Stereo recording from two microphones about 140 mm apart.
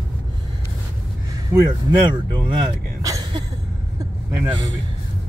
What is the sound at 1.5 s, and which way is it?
Speech, 30° right (ahead or behind).